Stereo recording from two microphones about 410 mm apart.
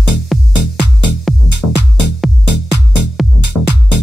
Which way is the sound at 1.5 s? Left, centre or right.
Right.